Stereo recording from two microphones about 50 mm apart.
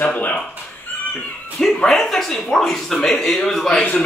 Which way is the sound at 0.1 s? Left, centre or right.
Left.